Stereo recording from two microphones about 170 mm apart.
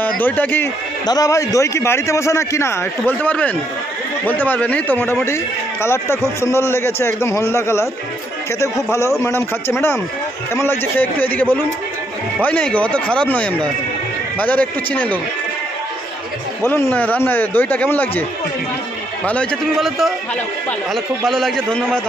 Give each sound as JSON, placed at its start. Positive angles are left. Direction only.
{"t": 0.0, "sound": "a man's voice", "side_deg": 10}
{"t": 1.0, "sound": "a man's voice", "side_deg": 20}
{"t": 16.6, "sound": "a man's voice", "side_deg": 10}
{"t": 19.2, "sound": "a man's voice", "side_deg": 5}